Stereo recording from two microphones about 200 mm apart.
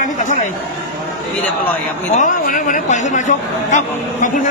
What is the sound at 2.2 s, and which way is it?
A man's voice, 40° left (ahead or behind).